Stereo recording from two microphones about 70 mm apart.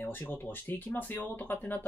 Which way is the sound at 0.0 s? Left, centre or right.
Left.